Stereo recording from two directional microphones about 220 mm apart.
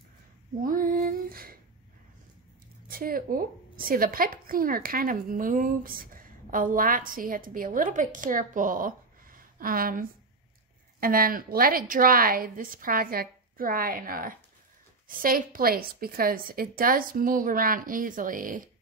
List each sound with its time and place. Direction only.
0.6 s female singing: 40° right (ahead or behind)
2.9 s a woman's voice: 40° right (ahead or behind)